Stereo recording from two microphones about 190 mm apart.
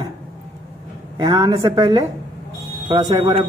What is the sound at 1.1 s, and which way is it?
A woman's voice, 25° right (ahead or behind).